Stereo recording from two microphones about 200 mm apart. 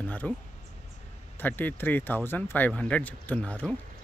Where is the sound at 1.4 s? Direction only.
10° left (ahead or behind).